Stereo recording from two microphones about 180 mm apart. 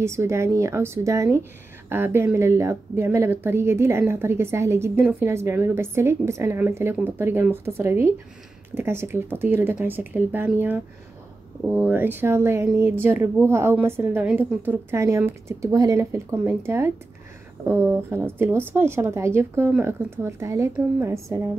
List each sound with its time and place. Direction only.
0.0 s a woman's voice: 15° right (ahead or behind)